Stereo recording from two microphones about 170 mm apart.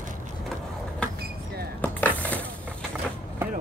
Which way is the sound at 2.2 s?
10° left (ahead or behind).